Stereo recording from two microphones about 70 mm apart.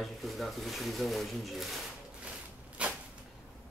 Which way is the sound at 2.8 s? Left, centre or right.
Centre.